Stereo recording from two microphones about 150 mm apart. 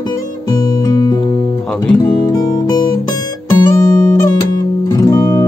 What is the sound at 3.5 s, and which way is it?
Guitar, 25° left (ahead or behind).